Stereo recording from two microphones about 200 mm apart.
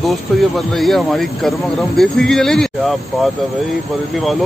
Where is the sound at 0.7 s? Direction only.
Centre (ahead or behind).